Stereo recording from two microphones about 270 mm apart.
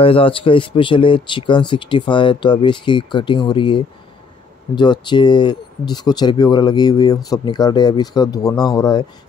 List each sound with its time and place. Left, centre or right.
0.0 s speech: centre